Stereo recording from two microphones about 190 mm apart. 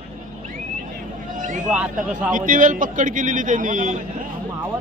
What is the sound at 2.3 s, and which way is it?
A man's voice, 45° right (ahead or behind).